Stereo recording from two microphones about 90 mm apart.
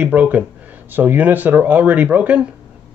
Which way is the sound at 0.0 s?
20° right (ahead or behind).